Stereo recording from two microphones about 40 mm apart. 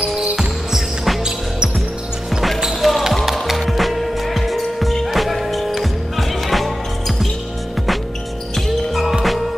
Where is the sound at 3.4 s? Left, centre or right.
Centre.